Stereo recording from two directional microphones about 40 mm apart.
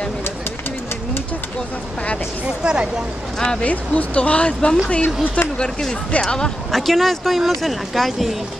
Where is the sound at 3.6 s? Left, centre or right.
Left.